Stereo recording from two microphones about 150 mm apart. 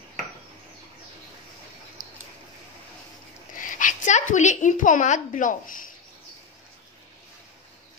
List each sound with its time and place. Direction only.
3.5 s a woman's voice: 60° left (ahead or behind)